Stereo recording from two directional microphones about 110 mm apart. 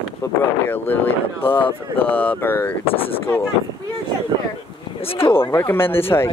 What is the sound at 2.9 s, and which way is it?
Speech, 60° left (ahead or behind).